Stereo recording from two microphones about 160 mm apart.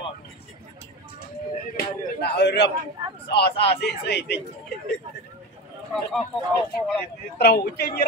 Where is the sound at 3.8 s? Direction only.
90° left.